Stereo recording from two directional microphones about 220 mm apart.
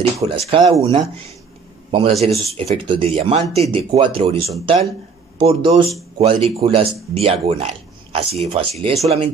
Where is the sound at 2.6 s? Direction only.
25° right (ahead or behind).